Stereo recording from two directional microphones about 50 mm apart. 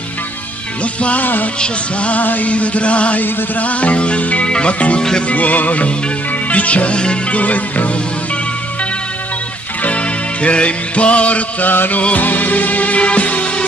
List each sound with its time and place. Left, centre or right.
1.0 s music: left
10.4 s music: left
11.7 s music: left